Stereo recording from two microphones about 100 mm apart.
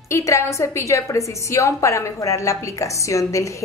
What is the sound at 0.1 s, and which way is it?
A woman's voice, 30° left (ahead or behind).